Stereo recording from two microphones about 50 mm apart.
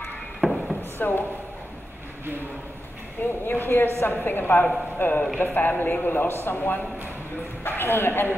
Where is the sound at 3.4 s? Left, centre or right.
Left.